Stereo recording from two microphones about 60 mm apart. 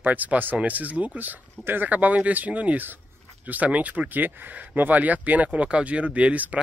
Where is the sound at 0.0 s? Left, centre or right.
Right.